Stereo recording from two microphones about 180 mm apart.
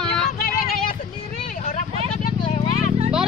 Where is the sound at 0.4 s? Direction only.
55° left (ahead or behind).